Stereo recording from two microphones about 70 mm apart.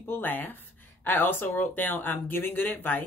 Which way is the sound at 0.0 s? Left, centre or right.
Left.